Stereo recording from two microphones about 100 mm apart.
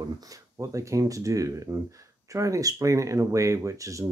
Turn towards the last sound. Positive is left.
turn(degrees=-30)  # may be behind; listen again after turning